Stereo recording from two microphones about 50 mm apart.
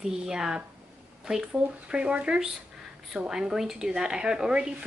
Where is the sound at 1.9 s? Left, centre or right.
Right.